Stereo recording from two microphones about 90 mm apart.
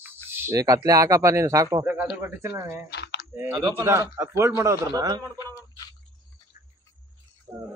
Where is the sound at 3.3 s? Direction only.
20° right (ahead or behind).